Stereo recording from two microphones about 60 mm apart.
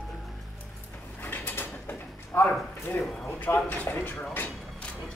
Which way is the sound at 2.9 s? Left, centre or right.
Left.